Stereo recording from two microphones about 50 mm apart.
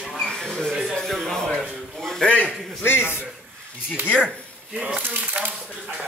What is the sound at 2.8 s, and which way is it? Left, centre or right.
Speech, left.